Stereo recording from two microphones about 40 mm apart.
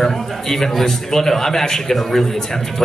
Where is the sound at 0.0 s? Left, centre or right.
Centre.